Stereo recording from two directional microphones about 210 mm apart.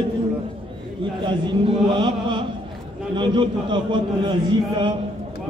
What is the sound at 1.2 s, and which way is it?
A man's voice, 20° right (ahead or behind).